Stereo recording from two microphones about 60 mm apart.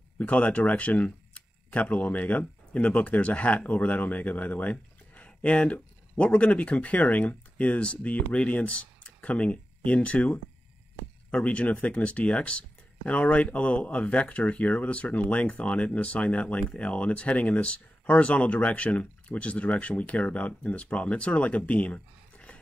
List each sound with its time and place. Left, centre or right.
0.2 s speech: left